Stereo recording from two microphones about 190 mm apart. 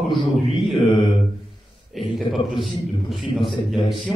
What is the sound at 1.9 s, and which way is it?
Speech, centre (ahead or behind).